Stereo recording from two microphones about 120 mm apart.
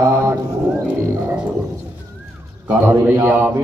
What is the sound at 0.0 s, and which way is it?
Clip-clop, 20° right (ahead or behind).